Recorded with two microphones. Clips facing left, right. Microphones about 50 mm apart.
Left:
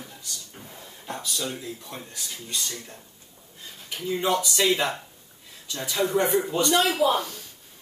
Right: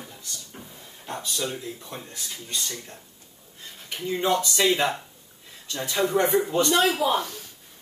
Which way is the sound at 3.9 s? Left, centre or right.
Right.